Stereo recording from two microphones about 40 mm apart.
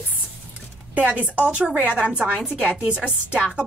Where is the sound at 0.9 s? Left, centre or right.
Right.